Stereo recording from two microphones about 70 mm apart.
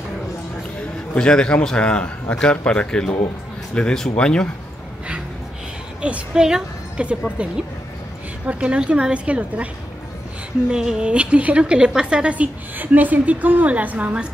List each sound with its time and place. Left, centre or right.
1.1 s a man's voice: centre
5.9 s a woman's voice: centre
8.5 s a woman's voice: centre
10.7 s a woman's voice: centre